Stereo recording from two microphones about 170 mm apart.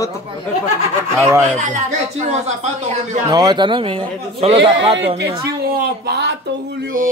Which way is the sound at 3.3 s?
25° right (ahead or behind).